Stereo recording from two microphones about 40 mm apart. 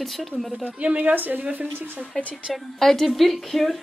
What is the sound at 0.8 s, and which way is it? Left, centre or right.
Speech, right.